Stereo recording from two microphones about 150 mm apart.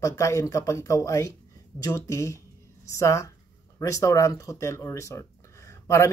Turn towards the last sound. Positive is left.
turn(degrees=20)  # may be behind; listen again after turning